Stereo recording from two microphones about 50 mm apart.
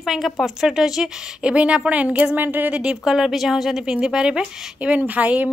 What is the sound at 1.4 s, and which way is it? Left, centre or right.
Speech, right.